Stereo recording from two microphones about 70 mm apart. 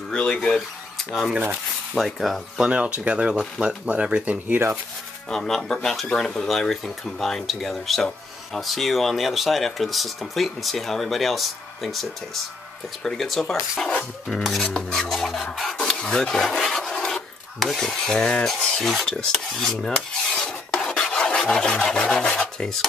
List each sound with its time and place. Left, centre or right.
0.1 s filing: centre
0.9 s speech: centre
1.3 s speech: right
2.0 s speech: centre
2.7 s speech: centre
5.3 s speech: centre
13.8 s filing: centre
14.4 s speech: centre
16.0 s filing: centre